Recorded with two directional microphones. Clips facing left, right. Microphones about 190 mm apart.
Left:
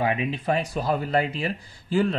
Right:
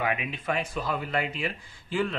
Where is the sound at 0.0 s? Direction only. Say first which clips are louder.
Left 5 dB; 30° left (ahead or behind).